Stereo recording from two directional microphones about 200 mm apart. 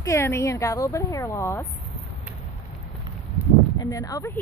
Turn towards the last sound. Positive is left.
turn(degrees=15)  # may be behind; listen again after turning